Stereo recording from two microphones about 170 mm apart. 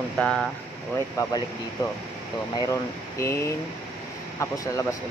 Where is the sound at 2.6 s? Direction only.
20° left (ahead or behind).